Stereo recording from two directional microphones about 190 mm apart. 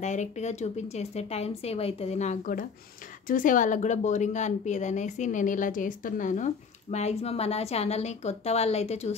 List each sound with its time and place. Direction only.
0.0 s a woman's voice: 40° left (ahead or behind)